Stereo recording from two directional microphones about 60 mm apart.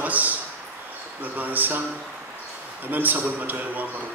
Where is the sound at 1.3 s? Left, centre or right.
Right.